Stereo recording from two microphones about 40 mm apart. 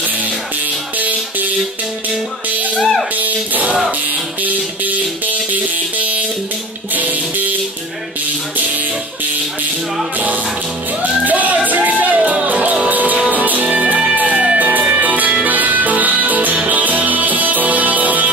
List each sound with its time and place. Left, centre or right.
0.9 s music: right
2.8 s speech: centre
3.2 s music: right
10.1 s music: right